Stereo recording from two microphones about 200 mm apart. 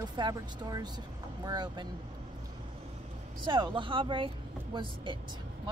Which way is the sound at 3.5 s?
25° right (ahead or behind).